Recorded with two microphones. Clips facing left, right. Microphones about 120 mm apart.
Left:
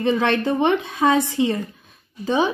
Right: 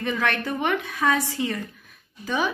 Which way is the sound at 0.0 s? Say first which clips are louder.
Left 7 dB; 25° left (ahead or behind).